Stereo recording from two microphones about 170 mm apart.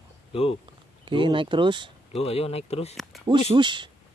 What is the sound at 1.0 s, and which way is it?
Speech, 30° right (ahead or behind).